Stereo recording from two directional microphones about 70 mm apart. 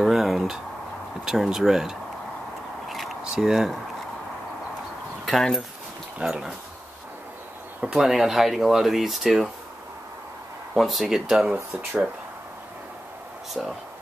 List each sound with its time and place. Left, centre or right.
0.0 s a sound: centre
1.2 s speech: centre
2.9 s a sound: centre
5.2 s speech: centre
6.1 s speech: centre
7.8 s speech: centre
10.7 s speech: centre
13.5 s speech: centre